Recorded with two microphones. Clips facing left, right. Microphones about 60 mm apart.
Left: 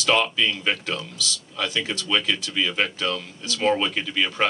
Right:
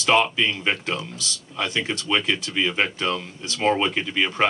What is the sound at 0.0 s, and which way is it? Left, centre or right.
Speech, right.